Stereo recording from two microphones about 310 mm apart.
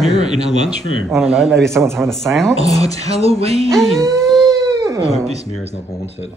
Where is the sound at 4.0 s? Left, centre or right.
Centre.